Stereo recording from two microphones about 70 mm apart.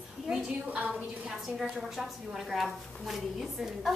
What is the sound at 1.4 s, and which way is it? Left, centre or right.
A woman's voice, centre.